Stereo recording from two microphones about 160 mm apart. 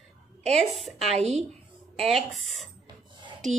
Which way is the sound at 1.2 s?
40° right (ahead or behind).